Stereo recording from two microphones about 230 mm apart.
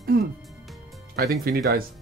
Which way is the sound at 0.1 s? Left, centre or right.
Right.